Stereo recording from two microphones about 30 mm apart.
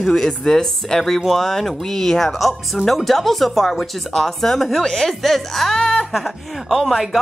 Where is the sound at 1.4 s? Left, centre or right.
Centre.